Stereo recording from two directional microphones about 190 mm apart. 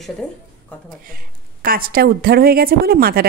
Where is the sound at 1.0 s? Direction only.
50° right (ahead or behind).